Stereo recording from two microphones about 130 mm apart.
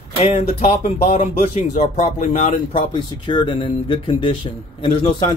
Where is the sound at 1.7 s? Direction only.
85° left.